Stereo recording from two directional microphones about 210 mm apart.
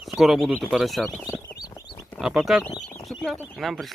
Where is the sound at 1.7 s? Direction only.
20° left (ahead or behind).